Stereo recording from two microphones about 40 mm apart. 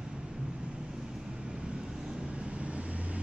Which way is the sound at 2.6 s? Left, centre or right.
Right.